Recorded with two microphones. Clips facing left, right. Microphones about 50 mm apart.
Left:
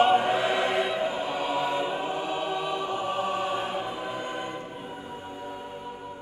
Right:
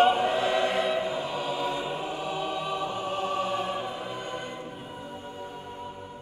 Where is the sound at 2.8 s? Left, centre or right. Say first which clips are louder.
Left 2 dB; centre.